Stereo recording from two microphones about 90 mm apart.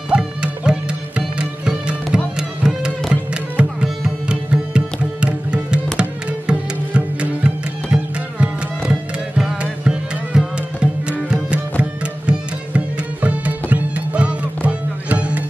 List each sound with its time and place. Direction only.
0.1 s music: 10° right (ahead or behind)